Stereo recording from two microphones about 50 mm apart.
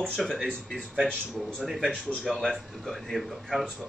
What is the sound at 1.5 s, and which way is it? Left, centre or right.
Speech, centre.